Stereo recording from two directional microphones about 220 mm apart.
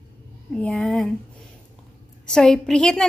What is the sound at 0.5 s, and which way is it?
Speech, centre (ahead or behind).